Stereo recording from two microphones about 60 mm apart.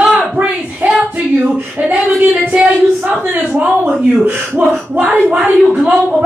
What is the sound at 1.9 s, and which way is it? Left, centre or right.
Speech, right.